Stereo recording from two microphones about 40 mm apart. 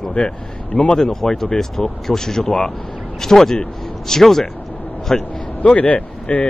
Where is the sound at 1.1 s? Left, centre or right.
Centre.